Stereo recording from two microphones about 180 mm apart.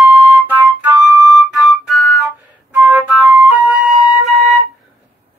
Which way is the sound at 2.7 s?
10° right (ahead or behind).